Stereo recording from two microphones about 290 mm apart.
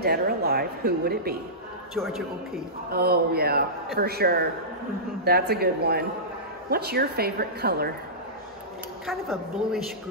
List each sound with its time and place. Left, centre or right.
0.0 s a man's voice: right
2.0 s a woman's voice: centre
2.9 s a man's voice: right
9.0 s a woman's voice: centre